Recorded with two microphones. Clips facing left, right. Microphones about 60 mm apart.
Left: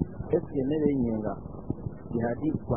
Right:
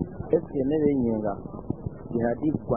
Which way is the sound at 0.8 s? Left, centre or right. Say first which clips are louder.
Right 3 dB; right.